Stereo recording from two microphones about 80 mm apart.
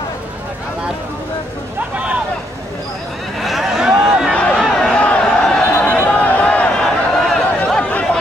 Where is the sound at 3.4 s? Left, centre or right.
Centre.